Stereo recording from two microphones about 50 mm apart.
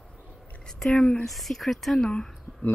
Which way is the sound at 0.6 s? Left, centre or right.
Centre.